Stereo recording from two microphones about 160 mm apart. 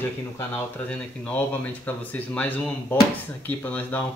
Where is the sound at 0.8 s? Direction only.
10° left (ahead or behind).